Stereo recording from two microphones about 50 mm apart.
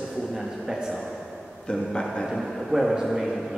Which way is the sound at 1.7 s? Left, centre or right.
Centre.